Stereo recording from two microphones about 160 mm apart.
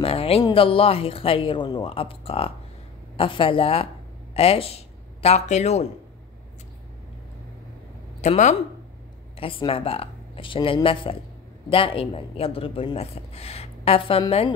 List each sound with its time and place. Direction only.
0.0 s speech: 35° left (ahead or behind)
8.2 s speech: 45° left (ahead or behind)
9.4 s speech: 35° left (ahead or behind)